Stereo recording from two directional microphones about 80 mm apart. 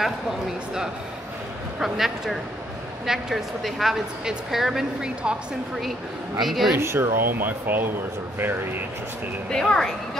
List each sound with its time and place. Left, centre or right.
1.8 s a woman's voice: centre
6.4 s a woman's voice: centre
6.8 s speech: right
9.5 s speech: centre